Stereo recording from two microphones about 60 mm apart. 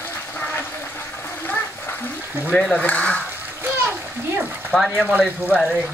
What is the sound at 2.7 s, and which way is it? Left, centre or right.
Speech, left.